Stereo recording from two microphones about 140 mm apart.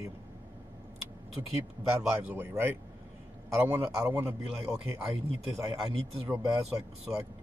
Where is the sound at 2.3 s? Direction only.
15° right (ahead or behind).